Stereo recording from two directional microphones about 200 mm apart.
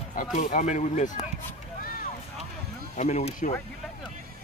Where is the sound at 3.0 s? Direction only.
35° left (ahead or behind).